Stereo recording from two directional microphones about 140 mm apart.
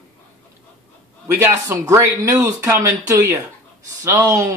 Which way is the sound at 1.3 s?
15° right (ahead or behind).